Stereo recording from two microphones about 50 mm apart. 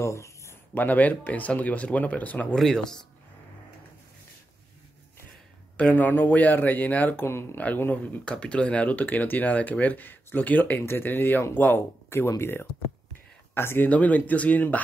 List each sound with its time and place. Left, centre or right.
0.0 s a sound: left
0.7 s speech: left
2.5 s speech: centre
5.8 s speech: left
7.2 s speech: left
7.5 s speech: left
8.3 s speech: left
10.9 s speech: left
13.8 s speech: left